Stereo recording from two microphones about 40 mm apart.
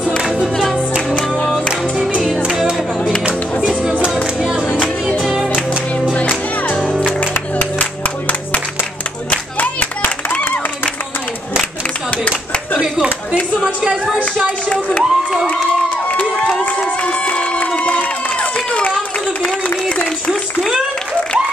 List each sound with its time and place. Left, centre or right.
6.1 s music: left
12.1 s a sound: left
14.7 s crowd: left
16.1 s crowd: left
18.7 s run: left